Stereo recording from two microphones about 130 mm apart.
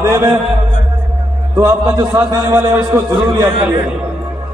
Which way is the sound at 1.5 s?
25° right (ahead or behind).